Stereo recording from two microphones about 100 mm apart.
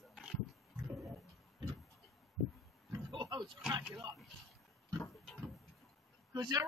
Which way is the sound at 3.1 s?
50° right (ahead or behind).